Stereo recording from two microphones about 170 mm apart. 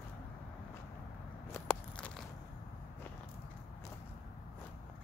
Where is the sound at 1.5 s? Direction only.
10° left (ahead or behind).